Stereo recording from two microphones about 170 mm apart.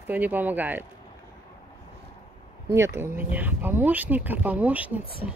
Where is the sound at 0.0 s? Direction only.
10° right (ahead or behind).